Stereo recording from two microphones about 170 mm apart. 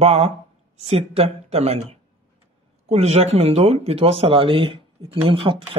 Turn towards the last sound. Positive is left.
turn(degrees=-30)  # may be behind; listen again after turning